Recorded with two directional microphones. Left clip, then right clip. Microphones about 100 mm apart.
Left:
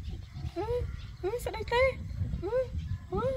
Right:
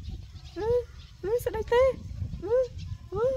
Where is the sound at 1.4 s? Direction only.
50° right (ahead or behind).